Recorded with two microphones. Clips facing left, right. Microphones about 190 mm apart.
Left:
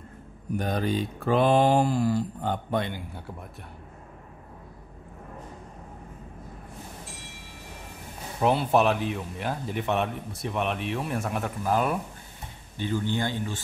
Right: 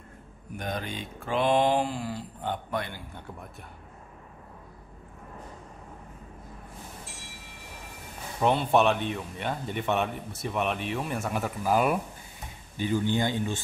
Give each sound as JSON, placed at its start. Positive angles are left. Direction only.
{"t": 0.6, "sound": "mantra", "side_deg": 35}
{"t": 2.7, "sound": "speech", "side_deg": 25}
{"t": 3.2, "sound": "speech", "side_deg": 5}
{"t": 8.4, "sound": "speech", "side_deg": 5}